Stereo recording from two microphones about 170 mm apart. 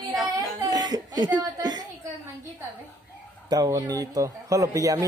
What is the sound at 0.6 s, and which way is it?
Chuckle, 20° right (ahead or behind).